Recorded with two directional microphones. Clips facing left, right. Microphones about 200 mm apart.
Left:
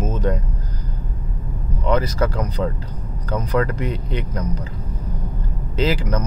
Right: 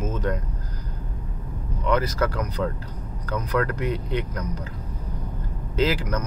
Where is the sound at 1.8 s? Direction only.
25° left (ahead or behind).